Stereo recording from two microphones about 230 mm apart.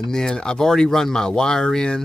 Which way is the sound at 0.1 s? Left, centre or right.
Centre.